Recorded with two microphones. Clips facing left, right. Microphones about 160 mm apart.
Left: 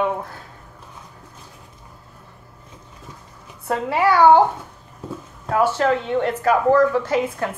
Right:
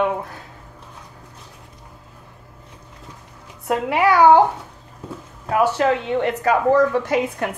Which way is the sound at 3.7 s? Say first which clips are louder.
Right 1 dB; 15° right (ahead or behind).